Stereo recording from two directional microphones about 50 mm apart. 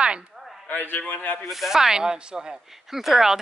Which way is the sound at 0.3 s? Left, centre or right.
Centre.